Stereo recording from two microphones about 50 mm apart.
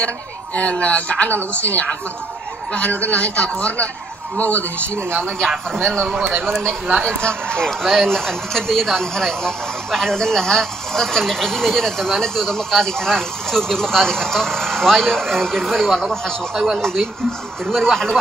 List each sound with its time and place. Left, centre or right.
0.6 s a man's voice: left
5.8 s speech: centre
7.2 s speech: centre